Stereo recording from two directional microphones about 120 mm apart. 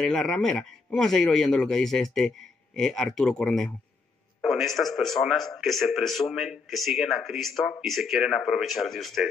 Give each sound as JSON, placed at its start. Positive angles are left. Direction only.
{"t": 0.0, "sound": "speech", "side_deg": 5}